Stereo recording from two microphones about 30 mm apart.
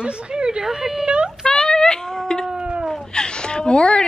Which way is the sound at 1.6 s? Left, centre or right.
Left.